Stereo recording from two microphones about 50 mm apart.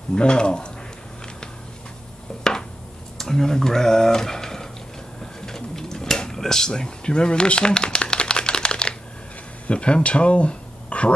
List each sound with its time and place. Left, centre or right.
0.1 s speech: centre
3.2 s speech: centre
5.2 s a sound: centre
9.7 s speech: left